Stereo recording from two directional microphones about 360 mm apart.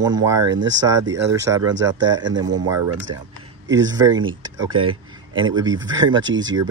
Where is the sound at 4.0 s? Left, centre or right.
Centre.